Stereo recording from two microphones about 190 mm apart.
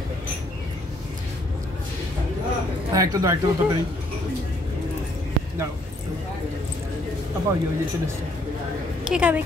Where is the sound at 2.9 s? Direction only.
20° right (ahead or behind).